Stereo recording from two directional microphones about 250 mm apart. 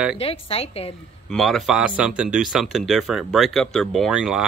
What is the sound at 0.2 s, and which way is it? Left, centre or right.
Speech, left.